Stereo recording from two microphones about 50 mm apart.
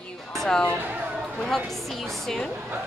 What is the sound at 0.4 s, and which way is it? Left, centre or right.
Speech, centre.